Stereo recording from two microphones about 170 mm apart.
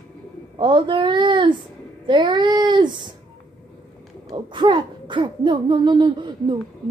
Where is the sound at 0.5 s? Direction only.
30° right (ahead or behind).